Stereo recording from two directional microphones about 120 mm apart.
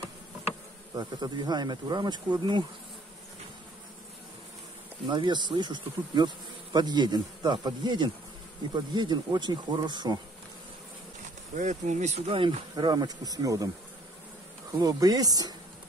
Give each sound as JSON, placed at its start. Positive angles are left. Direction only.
{"t": 0.9, "sound": "bee", "side_deg": -35}
{"t": 5.0, "sound": "bee", "side_deg": -40}
{"t": 11.5, "sound": "speech", "side_deg": -80}
{"t": 12.3, "sound": "speech", "side_deg": -45}
{"t": 12.7, "sound": "bee", "side_deg": -35}
{"t": 14.7, "sound": "bee", "side_deg": -30}